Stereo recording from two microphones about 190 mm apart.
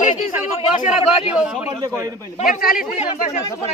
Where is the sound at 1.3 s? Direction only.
5° right (ahead or behind).